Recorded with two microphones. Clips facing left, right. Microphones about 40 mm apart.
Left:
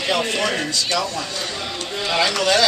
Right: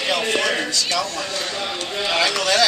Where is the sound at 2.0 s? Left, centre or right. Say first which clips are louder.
Left 1 dB; centre.